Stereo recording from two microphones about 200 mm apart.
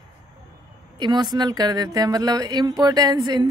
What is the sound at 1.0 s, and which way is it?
Speech, 20° right (ahead or behind).